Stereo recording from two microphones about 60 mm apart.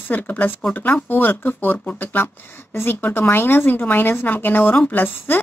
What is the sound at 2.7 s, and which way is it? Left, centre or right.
Speech, left.